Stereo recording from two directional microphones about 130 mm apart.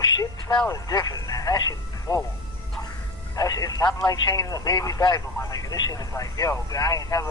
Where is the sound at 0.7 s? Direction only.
25° left (ahead or behind).